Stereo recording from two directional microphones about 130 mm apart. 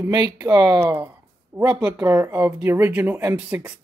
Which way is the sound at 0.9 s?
15° right (ahead or behind).